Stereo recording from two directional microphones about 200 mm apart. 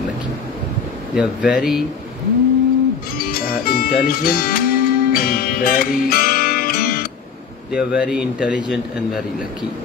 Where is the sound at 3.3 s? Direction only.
45° left (ahead or behind).